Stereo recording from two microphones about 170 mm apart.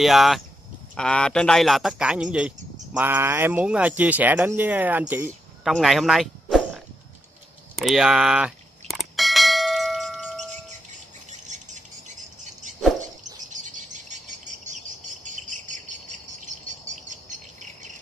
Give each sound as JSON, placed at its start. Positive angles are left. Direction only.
{"t": 0.0, "sound": "speech", "side_deg": 0}
{"t": 5.6, "sound": "speech", "side_deg": 0}
{"t": 7.7, "sound": "bell", "side_deg": 0}
{"t": 11.4, "sound": "a sound", "side_deg": -45}
{"t": 13.5, "sound": "bird", "side_deg": -45}
{"t": 15.2, "sound": "cricket", "side_deg": -45}